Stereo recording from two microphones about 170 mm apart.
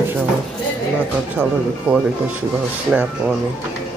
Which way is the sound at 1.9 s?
10° right (ahead or behind).